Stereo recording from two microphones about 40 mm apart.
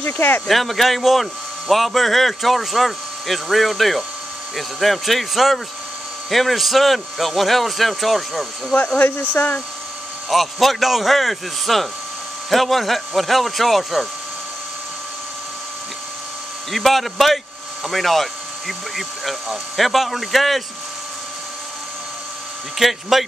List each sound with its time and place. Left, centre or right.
0.0 s speech: left
0.5 s speech: centre
8.9 s speech: left
10.3 s speech: centre
16.7 s speech: centre
22.8 s speech: centre